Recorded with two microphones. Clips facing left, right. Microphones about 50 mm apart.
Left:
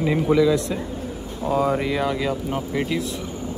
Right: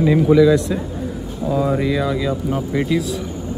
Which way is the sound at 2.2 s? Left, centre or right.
Centre.